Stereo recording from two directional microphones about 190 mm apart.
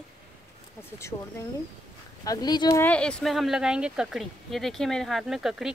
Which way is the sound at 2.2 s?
20° left (ahead or behind).